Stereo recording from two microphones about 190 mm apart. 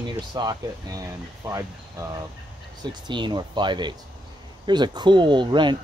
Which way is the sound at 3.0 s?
25° right (ahead or behind).